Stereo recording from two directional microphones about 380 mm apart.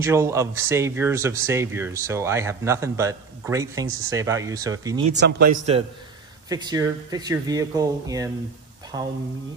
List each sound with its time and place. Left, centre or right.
0.0 s speech: centre
5.1 s speech: right